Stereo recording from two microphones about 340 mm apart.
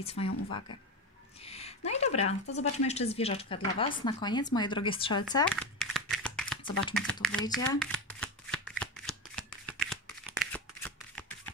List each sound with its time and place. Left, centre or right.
0.0 s speech: centre
1.4 s a sound: centre
2.1 s speech: left
2.5 s speech: centre
5.2 s a sound: centre
6.9 s shuffling cards: centre